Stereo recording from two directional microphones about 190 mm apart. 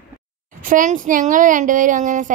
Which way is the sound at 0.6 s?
45° right (ahead or behind).